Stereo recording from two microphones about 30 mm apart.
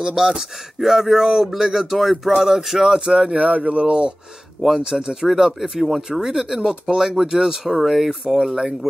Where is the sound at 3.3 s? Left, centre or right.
Right.